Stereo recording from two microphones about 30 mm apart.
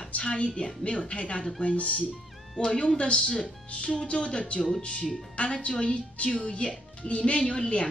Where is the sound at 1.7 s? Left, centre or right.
Left.